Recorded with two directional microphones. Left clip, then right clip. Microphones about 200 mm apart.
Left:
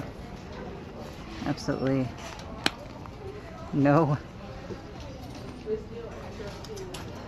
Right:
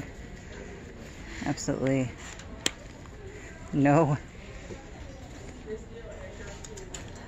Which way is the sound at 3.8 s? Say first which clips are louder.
Even; 15° right (ahead or behind).